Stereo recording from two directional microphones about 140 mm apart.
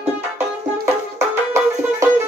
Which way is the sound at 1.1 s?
20° right (ahead or behind).